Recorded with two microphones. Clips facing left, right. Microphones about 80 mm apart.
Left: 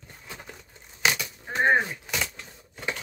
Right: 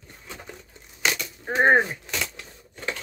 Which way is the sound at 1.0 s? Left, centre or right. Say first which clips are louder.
Left 1 dB; centre.